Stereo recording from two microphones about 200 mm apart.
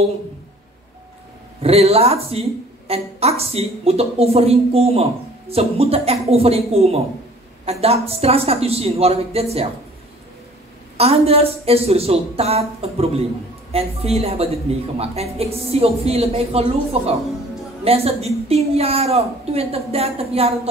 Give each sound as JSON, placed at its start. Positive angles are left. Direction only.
{"t": 1.6, "sound": "a woman's voice", "side_deg": -30}
{"t": 11.0, "sound": "a woman's voice", "side_deg": -30}